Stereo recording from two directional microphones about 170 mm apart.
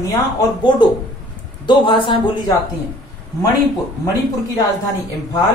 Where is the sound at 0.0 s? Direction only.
20° left (ahead or behind).